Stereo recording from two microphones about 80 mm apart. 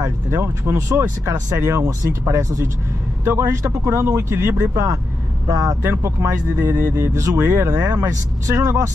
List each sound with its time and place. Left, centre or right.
0.0 s speech: right
5.5 s speech: right
5.8 s speech: right